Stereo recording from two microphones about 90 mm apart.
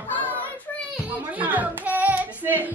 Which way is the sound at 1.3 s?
20° right (ahead or behind).